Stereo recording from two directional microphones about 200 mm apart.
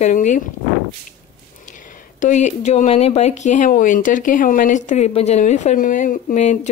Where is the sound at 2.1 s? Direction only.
40° left (ahead or behind).